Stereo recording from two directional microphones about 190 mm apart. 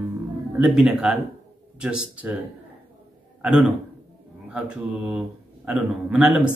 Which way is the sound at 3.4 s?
5° right (ahead or behind).